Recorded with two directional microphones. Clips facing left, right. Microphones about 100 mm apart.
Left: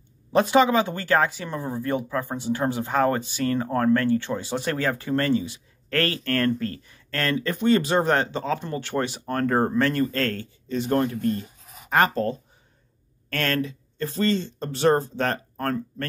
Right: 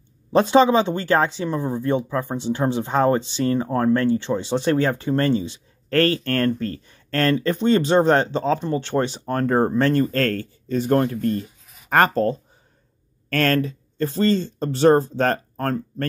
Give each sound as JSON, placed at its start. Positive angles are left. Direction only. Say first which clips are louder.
{"t": 0.3, "sound": "speech", "louder": "right 3 dB", "side_deg": -30}
{"t": 10.1, "sound": "speech", "louder": "right 5 dB", "side_deg": -45}